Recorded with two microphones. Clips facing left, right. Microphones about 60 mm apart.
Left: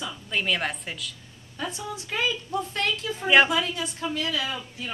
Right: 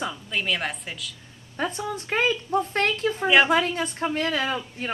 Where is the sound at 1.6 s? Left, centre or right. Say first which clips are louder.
Right 5 dB; right.